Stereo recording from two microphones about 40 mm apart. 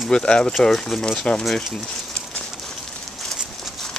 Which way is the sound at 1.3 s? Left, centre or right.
Left.